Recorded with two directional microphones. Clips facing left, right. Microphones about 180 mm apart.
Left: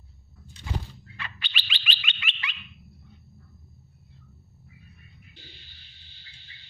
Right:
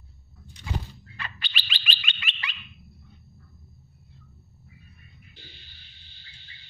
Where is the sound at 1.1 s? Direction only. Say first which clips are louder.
Right 1 dB; 40° right (ahead or behind).